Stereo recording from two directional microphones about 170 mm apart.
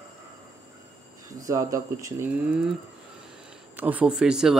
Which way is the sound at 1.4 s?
20° right (ahead or behind).